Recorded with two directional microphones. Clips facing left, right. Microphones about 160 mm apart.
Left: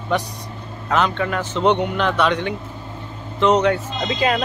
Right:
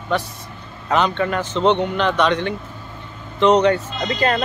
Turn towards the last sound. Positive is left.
turn(degrees=10)  # may be behind; listen again after turning